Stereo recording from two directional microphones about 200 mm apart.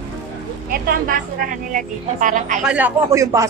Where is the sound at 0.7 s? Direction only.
45° right (ahead or behind).